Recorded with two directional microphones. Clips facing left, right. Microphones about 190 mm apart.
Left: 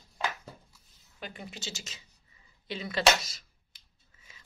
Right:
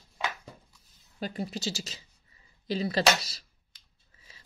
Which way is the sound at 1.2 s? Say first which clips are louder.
Right 9 dB; 35° right (ahead or behind).